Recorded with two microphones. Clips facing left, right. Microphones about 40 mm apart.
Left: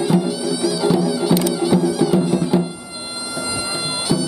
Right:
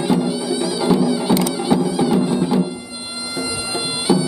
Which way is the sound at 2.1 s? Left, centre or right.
Centre.